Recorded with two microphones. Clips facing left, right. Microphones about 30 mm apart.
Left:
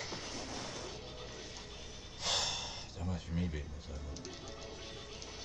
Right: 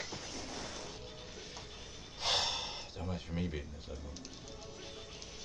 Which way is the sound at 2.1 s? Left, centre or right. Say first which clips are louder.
Right 2 dB; centre.